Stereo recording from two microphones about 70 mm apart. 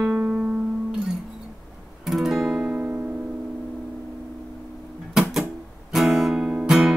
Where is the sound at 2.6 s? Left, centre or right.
Centre.